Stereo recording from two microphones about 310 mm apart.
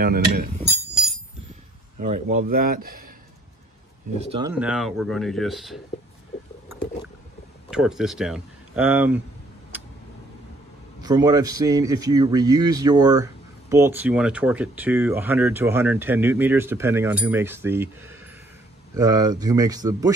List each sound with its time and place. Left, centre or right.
0.0 s speech: right
2.0 s speech: right
4.3 s speech: centre
7.7 s speech: centre
11.0 s speech: centre